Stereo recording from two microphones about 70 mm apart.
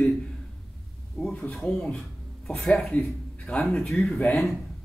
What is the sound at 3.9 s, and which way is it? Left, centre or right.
Speech, centre.